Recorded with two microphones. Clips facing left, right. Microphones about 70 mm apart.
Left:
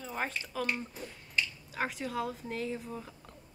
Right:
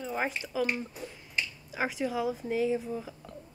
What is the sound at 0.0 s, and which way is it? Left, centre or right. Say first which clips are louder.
Speech: right 4 dB; centre.